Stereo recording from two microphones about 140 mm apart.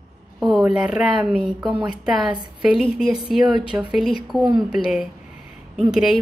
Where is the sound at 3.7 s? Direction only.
20° right (ahead or behind).